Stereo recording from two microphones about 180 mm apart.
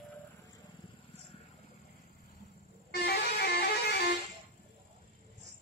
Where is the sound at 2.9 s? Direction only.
65° left (ahead or behind).